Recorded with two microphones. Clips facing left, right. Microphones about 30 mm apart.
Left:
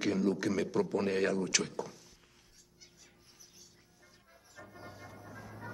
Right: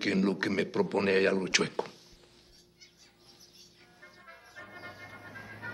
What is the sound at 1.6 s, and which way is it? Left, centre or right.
Speech, right.